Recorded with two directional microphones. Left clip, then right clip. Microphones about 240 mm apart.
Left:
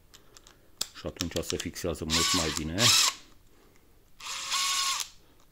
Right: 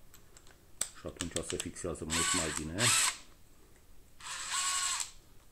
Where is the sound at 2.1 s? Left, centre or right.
Centre.